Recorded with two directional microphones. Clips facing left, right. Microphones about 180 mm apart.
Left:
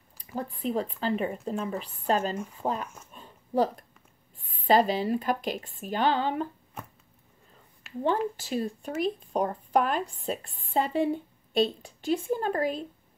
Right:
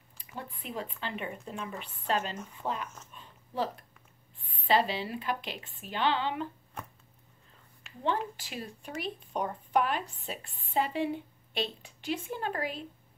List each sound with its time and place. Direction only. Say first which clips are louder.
0.2 s a woman's voice: left 10 dB; 35° left (ahead or behind)
3.1 s dog: left 11 dB; 45° left (ahead or behind)
4.4 s a woman's voice: left 5 dB; 45° left (ahead or behind)
7.8 s a sound: left 14 dB; centre (ahead or behind)
8.4 s a woman's voice: left 11 dB; 40° left (ahead or behind)